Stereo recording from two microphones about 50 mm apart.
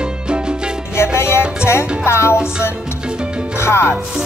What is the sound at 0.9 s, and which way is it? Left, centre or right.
Music, left.